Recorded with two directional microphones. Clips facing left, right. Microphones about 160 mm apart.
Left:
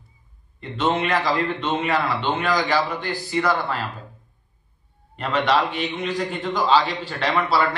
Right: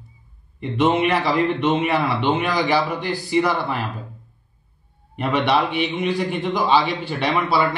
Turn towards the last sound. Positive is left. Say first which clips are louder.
# right 1 dB
turn(degrees=-15)  # may be behind; listen again after turning